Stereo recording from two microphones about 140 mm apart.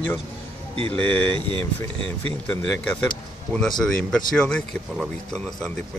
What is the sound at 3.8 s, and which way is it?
Speech, 5° left (ahead or behind).